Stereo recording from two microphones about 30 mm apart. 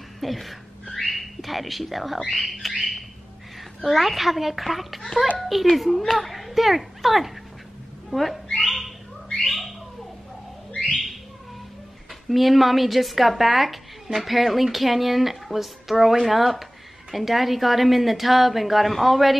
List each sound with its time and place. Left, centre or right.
0.2 s a sound: centre
2.6 s a sound: centre
3.8 s speech: centre
8.6 s bird: centre
10.7 s bird: left
12.3 s speech: centre